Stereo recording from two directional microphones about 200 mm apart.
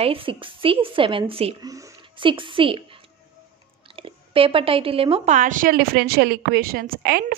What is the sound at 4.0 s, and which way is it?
Speech, 25° right (ahead or behind).